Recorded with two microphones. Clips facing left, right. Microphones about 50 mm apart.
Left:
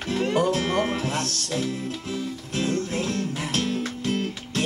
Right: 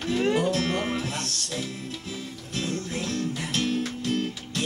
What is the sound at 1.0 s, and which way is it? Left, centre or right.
Speech, left.